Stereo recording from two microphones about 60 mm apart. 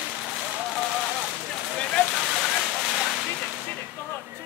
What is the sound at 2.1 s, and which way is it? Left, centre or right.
Vehicle, centre.